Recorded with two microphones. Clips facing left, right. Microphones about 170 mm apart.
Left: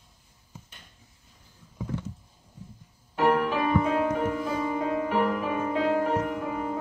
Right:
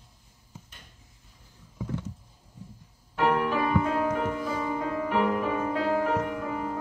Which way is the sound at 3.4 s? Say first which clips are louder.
Left 1 dB; 5° left (ahead or behind).